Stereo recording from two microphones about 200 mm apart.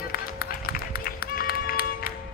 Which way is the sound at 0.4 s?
50° left (ahead or behind).